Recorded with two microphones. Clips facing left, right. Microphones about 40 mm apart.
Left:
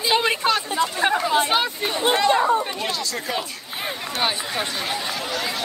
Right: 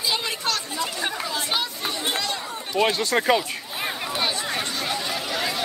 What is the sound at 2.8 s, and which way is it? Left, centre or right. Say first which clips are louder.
Speech: right 6 dB; right.